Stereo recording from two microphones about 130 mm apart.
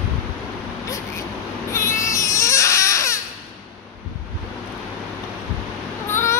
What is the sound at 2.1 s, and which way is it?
Baby cry, 25° left (ahead or behind).